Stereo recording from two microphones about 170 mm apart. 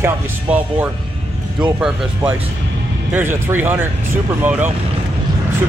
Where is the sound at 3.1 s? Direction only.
15° right (ahead or behind).